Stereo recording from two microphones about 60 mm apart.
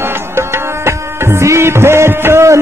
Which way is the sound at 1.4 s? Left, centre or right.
Right.